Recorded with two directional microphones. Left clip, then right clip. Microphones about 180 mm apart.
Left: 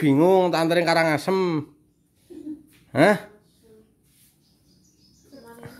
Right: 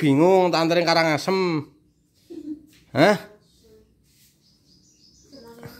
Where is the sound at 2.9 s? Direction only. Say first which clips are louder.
Even; 5° left (ahead or behind).